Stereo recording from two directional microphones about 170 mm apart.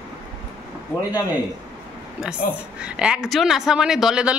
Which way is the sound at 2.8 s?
5° right (ahead or behind).